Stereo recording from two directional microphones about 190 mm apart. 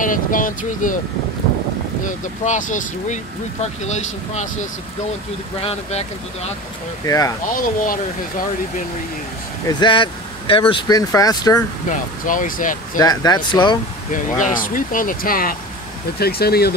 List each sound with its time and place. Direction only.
0.0 s speech: 45° left (ahead or behind)
2.0 s speech: 40° left (ahead or behind)
7.1 s speech: 15° left (ahead or behind)
7.5 s speech: 45° left (ahead or behind)
9.8 s speech: 25° left (ahead or behind)
12.3 s speech: 45° left (ahead or behind)
12.9 s speech: 20° left (ahead or behind)
14.1 s speech: 45° left (ahead or behind)